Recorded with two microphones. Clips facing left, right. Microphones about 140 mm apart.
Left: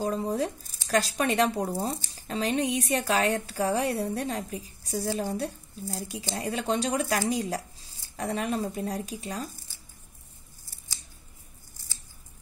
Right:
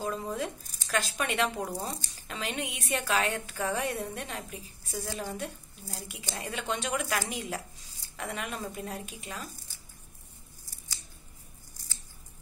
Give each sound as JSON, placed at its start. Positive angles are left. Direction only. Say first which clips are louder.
{"t": 0.0, "sound": "speech", "louder": "left 5 dB", "side_deg": 35}